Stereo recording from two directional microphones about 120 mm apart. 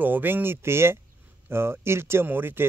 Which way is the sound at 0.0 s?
15° right (ahead or behind).